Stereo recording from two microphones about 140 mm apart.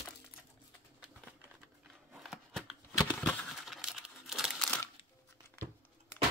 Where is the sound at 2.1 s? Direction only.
5° right (ahead or behind).